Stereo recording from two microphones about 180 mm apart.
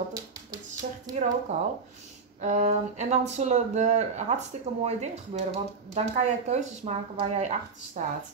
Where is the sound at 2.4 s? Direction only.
40° right (ahead or behind).